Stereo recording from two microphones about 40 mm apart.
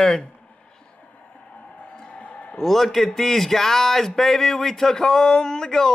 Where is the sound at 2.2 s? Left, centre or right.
Left.